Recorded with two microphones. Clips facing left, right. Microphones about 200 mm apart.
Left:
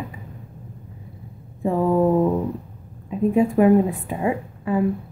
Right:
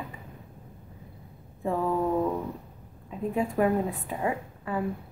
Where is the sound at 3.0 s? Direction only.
15° left (ahead or behind).